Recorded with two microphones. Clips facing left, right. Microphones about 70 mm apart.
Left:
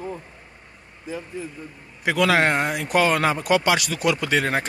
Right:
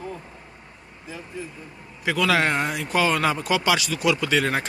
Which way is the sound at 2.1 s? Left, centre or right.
Left.